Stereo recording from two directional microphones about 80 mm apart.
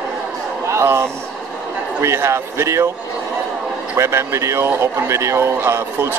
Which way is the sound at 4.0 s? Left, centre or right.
Right.